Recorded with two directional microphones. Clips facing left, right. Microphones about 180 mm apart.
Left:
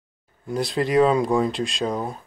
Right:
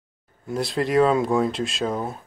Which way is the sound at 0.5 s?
Centre (ahead or behind).